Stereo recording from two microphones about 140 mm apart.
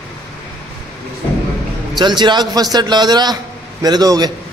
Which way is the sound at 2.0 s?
30° right (ahead or behind).